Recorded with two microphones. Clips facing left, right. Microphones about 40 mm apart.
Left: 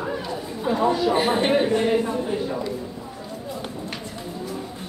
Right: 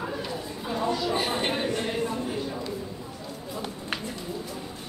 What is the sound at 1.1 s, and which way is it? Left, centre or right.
Speech, left.